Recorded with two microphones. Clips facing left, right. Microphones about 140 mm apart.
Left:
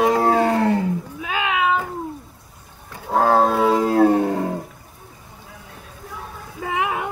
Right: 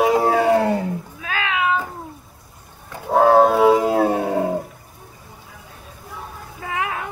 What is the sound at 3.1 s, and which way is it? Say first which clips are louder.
Roaring cats: right 3 dB; 5° right (ahead or behind).